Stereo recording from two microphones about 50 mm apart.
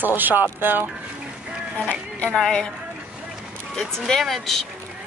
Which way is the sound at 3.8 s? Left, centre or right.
Centre.